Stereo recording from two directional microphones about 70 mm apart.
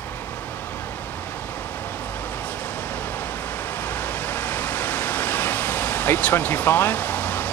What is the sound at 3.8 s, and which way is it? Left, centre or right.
Vehicle, left.